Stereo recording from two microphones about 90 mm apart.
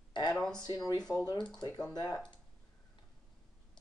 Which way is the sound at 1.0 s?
5° left (ahead or behind).